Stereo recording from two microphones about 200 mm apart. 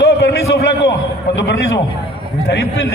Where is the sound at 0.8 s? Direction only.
60° left (ahead or behind).